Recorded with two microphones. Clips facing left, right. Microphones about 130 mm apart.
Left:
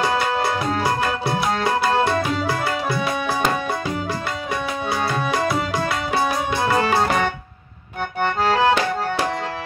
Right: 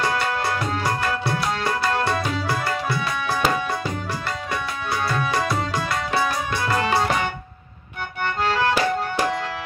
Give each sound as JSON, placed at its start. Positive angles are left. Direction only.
{"t": 1.2, "sound": "tabla", "side_deg": 20}
{"t": 8.2, "sound": "accordion", "side_deg": 25}